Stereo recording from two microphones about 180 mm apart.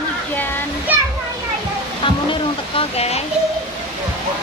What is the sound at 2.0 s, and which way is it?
Music, 30° left (ahead or behind).